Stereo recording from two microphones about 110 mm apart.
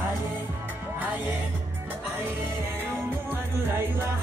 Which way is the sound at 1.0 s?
15° right (ahead or behind).